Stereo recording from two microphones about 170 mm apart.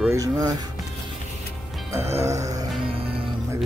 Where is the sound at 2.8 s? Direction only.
35° right (ahead or behind).